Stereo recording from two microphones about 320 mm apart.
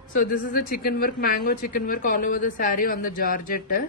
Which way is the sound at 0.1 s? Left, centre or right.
Left.